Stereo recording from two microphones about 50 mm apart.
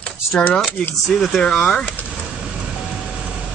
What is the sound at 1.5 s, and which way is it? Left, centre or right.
Speech, centre.